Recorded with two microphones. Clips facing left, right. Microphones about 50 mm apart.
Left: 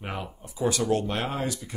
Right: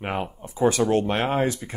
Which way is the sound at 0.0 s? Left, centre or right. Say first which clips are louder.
Right 7 dB; right.